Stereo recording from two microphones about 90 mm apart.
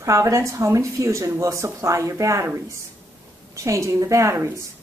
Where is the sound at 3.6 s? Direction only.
35° right (ahead or behind).